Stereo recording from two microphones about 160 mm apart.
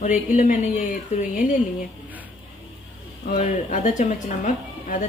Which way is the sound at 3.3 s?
50° left (ahead or behind).